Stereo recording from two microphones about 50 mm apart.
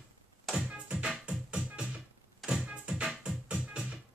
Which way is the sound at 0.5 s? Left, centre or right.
Centre.